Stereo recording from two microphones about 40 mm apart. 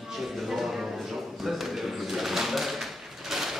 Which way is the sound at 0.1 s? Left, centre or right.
Centre.